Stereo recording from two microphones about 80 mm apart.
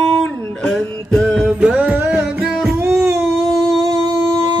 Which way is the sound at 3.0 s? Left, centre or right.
Right.